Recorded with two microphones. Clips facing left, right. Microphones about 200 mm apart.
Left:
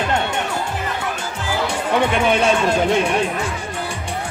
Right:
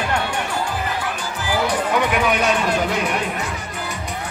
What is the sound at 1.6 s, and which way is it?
Speech, 25° left (ahead or behind).